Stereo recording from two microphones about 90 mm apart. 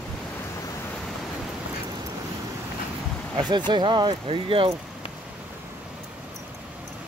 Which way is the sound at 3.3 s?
55° right (ahead or behind).